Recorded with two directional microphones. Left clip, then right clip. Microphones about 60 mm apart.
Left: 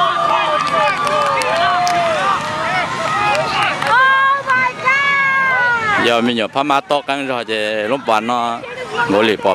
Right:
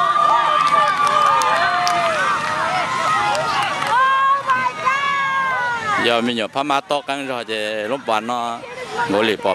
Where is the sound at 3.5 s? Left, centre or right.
Left.